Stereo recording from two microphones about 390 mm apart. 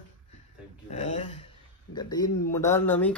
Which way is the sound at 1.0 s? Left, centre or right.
Centre.